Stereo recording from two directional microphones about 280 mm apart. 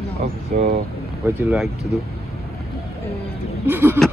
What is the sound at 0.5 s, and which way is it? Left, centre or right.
Speech, right.